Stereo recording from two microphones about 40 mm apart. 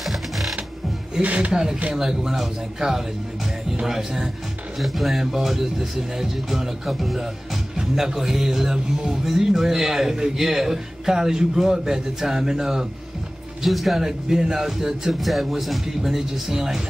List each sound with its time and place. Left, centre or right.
0.0 s music: centre
1.2 s speech: right
1.5 s a man's voice: centre
7.7 s a man's voice: centre
13.6 s speech: centre
14.0 s a man's voice: centre
15.1 s a man's voice: centre